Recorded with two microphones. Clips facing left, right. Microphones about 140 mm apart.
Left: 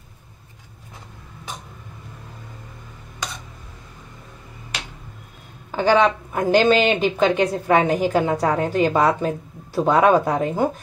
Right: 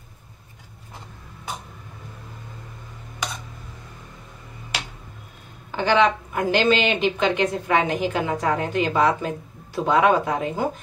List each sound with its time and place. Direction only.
5.8 s speech: 40° left (ahead or behind)